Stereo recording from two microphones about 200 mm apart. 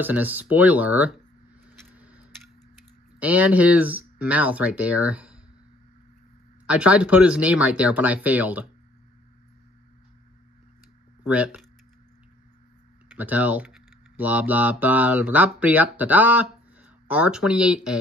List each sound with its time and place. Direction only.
0.0 s speech: 10° right (ahead or behind)
1.7 s a sound: 5° right (ahead or behind)
3.2 s speech: 5° right (ahead or behind)
6.6 s speech: 5° right (ahead or behind)
11.2 s speech: 5° right (ahead or behind)
13.1 s speech: 10° right (ahead or behind)